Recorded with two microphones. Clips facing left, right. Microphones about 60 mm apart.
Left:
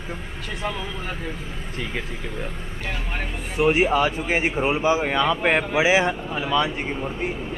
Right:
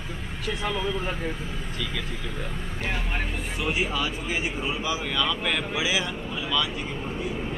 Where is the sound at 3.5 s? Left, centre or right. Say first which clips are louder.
Left 10 dB; left.